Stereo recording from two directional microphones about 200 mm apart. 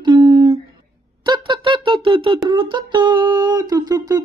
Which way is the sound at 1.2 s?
25° right (ahead or behind).